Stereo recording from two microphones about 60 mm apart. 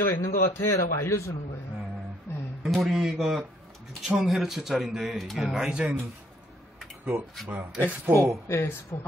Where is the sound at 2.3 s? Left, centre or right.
Left.